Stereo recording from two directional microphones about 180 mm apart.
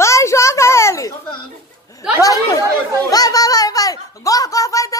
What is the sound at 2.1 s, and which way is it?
Speech, 20° left (ahead or behind).